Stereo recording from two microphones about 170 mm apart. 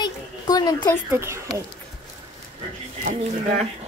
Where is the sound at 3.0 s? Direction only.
45° right (ahead or behind).